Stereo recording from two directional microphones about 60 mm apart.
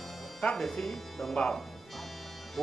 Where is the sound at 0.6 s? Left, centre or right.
Centre.